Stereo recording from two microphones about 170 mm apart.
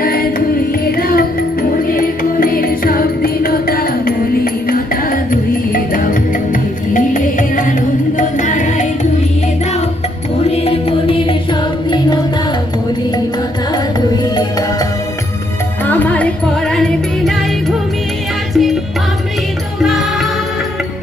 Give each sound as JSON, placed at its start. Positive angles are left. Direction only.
{"t": 0.0, "sound": "music", "side_deg": 60}
{"t": 6.9, "sound": "music", "side_deg": 50}
{"t": 10.4, "sound": "music", "side_deg": 35}
{"t": 15.9, "sound": "music", "side_deg": 10}